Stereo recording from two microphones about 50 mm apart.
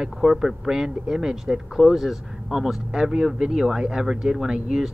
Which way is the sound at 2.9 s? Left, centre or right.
Centre.